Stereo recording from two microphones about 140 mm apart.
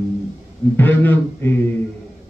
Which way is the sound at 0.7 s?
15° left (ahead or behind).